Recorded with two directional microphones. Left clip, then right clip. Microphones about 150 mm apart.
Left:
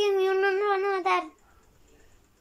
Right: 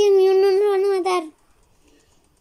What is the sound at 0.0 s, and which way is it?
Child singing, 45° right (ahead or behind).